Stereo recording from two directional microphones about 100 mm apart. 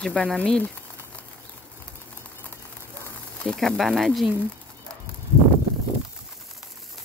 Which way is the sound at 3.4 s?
5° left (ahead or behind).